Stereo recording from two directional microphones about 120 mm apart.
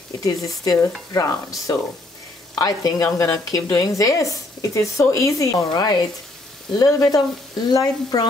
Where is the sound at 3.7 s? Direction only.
30° left (ahead or behind).